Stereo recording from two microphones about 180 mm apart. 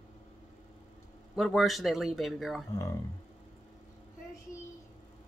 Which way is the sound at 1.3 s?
Centre (ahead or behind).